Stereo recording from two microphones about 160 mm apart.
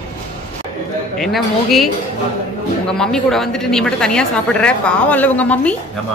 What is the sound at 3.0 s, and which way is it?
A woman's voice, 5° left (ahead or behind).